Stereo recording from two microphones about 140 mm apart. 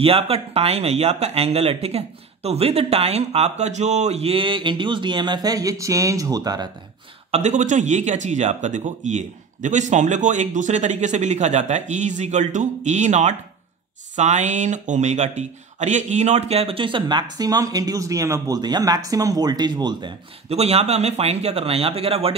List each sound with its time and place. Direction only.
0.0 s speech: 45° right (ahead or behind); by 6.7 s 30° right (ahead or behind)
7.2 s speech: 50° right (ahead or behind); by 20.1 s 30° right (ahead or behind)
20.4 s speech: 45° right (ahead or behind)